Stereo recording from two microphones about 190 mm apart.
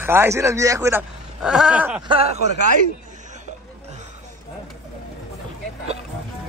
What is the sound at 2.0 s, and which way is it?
Speech, 30° right (ahead or behind).